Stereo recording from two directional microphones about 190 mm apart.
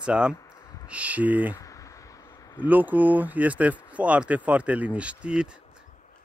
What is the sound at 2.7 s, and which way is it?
Speech, 10° right (ahead or behind).